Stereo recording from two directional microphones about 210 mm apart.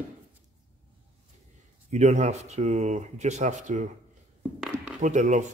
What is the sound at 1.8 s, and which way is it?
Speech, 35° right (ahead or behind).